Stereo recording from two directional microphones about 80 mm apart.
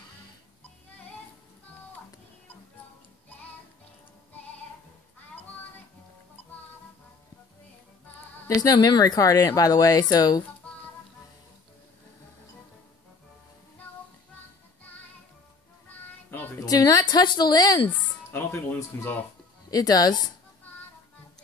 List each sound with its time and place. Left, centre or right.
8.5 s speech: left
16.5 s a sound: left
17.8 s speech: left
19.7 s speech: left